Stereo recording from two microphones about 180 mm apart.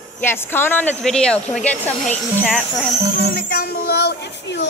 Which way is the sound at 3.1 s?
60° left (ahead or behind).